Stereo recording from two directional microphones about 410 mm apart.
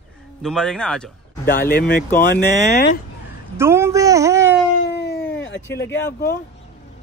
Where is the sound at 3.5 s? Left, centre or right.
Centre.